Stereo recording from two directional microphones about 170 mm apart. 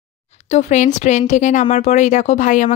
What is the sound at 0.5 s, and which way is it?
Speech, 45° left (ahead or behind).